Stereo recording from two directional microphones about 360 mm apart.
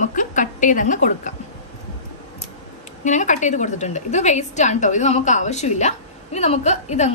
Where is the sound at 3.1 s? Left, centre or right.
Centre.